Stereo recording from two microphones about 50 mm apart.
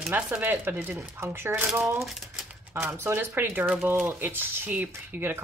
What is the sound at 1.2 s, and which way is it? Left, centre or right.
Speech, right.